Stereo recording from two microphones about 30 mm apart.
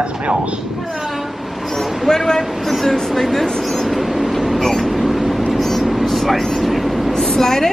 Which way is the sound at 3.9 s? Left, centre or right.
Centre.